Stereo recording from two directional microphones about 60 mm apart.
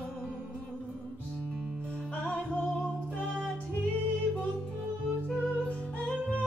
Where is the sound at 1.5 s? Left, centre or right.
Centre.